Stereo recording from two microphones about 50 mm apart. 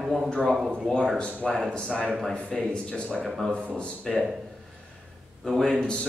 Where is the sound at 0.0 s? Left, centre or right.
Centre.